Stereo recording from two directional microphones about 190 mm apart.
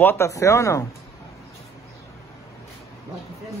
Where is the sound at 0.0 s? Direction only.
15° left (ahead or behind).